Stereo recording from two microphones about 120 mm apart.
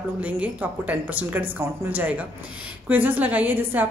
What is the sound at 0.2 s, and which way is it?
A woman's voice, 15° right (ahead or behind).